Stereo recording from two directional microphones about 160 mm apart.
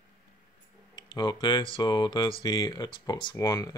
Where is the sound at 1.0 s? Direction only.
30° left (ahead or behind).